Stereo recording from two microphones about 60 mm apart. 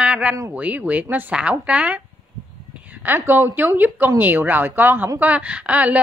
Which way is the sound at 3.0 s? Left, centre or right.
Right.